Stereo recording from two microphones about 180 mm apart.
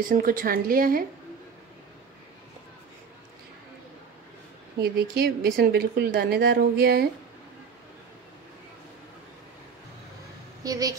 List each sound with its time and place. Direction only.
0.1 s a woman's voice: 50° right (ahead or behind)
4.7 s a woman's voice: 60° right (ahead or behind)
10.6 s a woman's voice: 20° right (ahead or behind)